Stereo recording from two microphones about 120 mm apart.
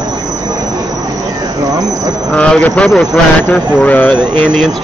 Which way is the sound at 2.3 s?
10° left (ahead or behind).